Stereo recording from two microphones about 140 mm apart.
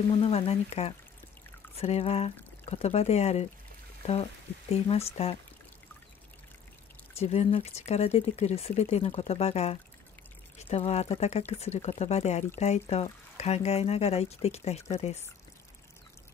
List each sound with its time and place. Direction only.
0.2 s speech: 45° left (ahead or behind)
7.2 s speech: 50° left (ahead or behind)